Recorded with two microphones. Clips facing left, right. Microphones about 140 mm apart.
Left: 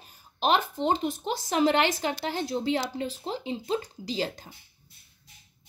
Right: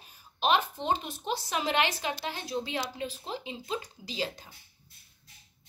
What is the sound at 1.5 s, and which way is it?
Speech, 40° left (ahead or behind).